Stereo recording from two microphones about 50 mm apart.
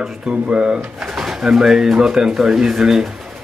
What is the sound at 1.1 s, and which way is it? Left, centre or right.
Speech, centre.